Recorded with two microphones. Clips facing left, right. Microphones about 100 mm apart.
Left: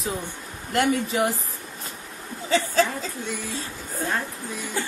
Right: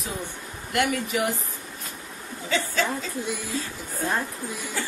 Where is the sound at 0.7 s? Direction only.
30° left (ahead or behind).